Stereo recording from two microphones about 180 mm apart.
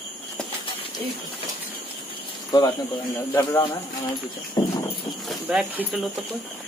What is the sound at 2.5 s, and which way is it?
Speech, 20° left (ahead or behind).